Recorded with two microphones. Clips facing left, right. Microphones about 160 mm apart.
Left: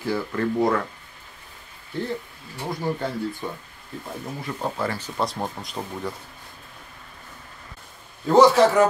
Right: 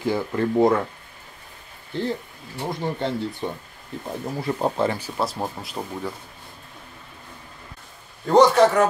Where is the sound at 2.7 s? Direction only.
25° right (ahead or behind).